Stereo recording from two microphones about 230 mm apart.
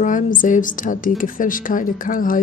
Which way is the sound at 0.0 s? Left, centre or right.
Left.